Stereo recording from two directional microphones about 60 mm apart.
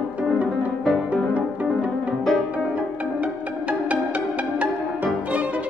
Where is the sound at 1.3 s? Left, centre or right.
Right.